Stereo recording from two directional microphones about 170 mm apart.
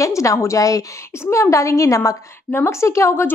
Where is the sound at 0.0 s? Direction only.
20° left (ahead or behind).